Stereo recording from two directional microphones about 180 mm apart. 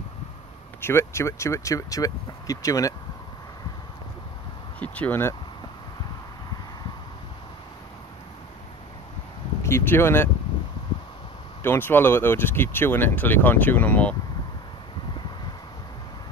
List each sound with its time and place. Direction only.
0.7 s speech: 15° left (ahead or behind)
4.7 s speech: 10° left (ahead or behind)
9.6 s speech: 15° left (ahead or behind)
11.6 s speech: 10° left (ahead or behind)